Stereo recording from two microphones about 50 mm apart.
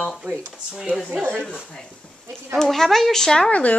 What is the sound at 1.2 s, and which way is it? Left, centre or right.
Speech, right.